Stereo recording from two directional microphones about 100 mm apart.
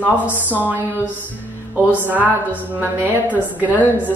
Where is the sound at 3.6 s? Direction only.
15° right (ahead or behind).